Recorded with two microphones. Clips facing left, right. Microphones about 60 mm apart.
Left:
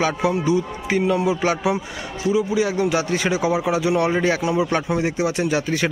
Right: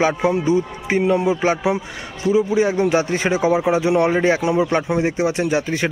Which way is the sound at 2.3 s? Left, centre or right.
Right.